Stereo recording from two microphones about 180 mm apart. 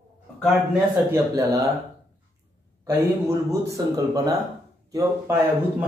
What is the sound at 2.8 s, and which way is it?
Speech, 15° right (ahead or behind).